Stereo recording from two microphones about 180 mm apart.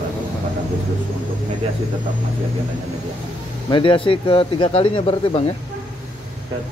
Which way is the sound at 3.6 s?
30° left (ahead or behind).